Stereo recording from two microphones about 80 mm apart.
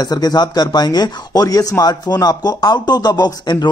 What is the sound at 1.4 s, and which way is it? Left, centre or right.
Speech, left.